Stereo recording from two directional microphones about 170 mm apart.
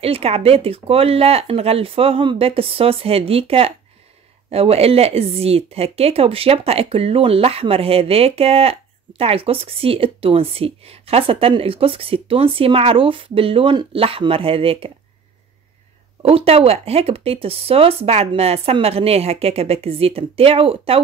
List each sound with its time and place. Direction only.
0.0 s speech: 35° right (ahead or behind)
16.2 s speech: 35° right (ahead or behind)